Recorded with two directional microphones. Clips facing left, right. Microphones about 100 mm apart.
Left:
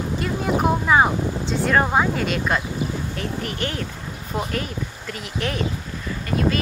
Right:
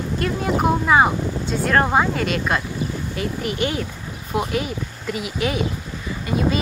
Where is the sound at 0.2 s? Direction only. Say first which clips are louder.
Right 1 dB; centre (ahead or behind).